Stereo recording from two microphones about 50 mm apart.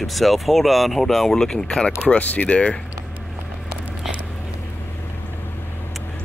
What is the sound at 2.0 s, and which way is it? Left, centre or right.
Speech, left.